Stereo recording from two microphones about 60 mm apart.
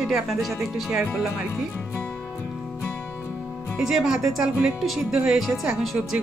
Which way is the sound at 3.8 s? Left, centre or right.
Centre.